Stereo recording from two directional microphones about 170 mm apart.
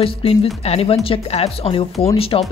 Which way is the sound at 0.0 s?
35° left (ahead or behind).